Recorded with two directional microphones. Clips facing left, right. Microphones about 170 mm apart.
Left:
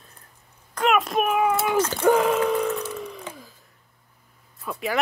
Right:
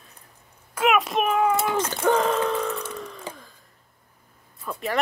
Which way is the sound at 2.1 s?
10° left (ahead or behind).